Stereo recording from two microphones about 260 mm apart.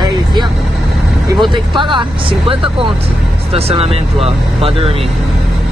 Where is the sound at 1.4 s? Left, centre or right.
Centre.